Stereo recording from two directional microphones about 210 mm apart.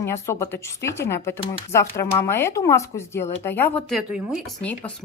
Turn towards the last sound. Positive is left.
turn(degrees=-5)  # may be behind; listen again after turning